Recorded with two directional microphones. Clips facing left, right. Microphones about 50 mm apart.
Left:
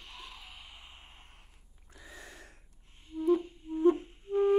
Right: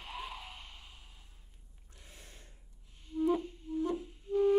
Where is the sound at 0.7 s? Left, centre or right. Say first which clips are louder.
Left 2 dB; left.